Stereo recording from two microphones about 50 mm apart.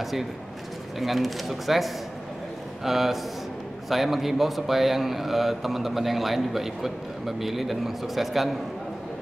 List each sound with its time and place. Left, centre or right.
0.0 s a man's voice: centre